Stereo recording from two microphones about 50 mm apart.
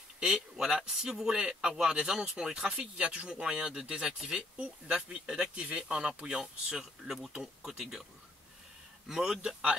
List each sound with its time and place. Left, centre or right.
0.2 s speech: centre
6.2 s speech: centre
9.0 s speech: centre